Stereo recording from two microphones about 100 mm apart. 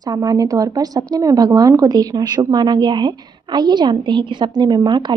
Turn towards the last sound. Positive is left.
turn(degrees=-45)  # may be behind; listen again after turning